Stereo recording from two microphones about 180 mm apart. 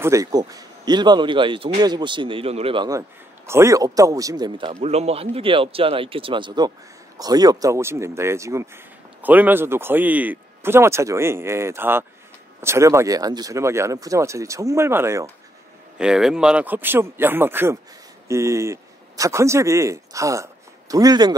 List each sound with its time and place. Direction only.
0.0 s speech: 20° right (ahead or behind)
16.0 s speech: 5° right (ahead or behind); by 21.4 s 20° right (ahead or behind)